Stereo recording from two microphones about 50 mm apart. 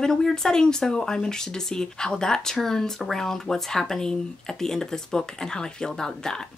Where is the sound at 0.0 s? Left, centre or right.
Centre.